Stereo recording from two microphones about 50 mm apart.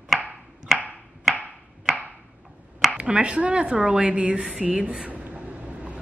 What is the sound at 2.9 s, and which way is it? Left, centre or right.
A woman's voice, right.